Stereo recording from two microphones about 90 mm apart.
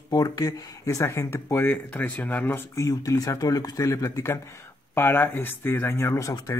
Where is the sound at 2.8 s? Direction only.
40° left (ahead or behind).